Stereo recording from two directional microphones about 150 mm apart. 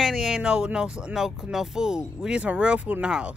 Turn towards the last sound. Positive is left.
turn(degrees=-5)  # may be behind; listen again after turning